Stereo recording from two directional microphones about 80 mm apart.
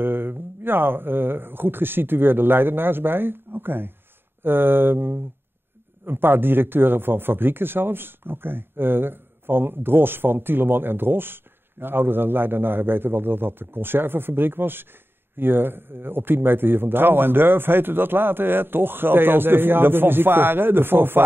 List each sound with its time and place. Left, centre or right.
0.0 s speech: right